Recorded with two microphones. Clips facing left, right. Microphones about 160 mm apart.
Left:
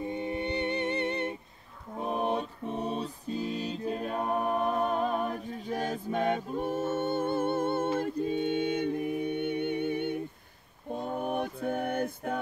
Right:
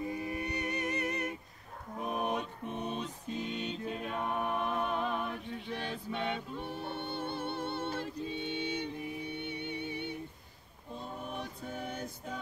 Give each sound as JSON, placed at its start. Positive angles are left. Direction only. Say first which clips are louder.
{"t": 0.0, "sound": "music", "louder": "left 4 dB", "side_deg": 25}